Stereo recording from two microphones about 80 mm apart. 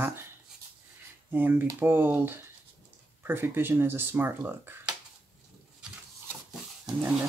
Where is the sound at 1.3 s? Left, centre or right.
Right.